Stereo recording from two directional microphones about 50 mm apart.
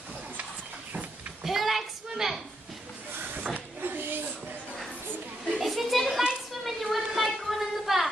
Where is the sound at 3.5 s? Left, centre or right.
Right.